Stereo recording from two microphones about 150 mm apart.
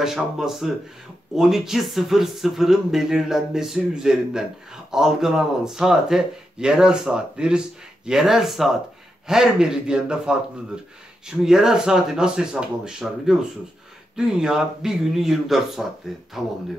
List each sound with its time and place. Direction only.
0.0 s speech: centre (ahead or behind)